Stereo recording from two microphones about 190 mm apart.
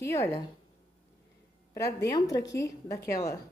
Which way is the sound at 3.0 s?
15° left (ahead or behind).